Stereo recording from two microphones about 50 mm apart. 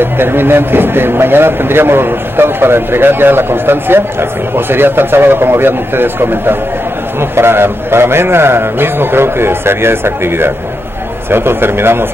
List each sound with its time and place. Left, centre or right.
0.0 s a man's voice: right